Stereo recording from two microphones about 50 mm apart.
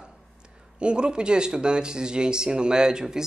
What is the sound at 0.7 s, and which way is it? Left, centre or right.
Speech, centre.